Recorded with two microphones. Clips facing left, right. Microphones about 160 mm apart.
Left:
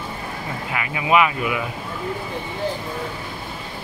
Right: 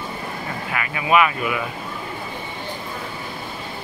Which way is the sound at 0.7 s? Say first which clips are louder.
Even; 20° left (ahead or behind).